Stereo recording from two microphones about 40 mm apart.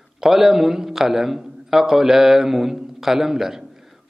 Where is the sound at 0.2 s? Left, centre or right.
Centre.